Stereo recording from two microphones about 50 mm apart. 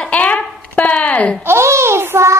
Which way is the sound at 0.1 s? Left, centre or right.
Left.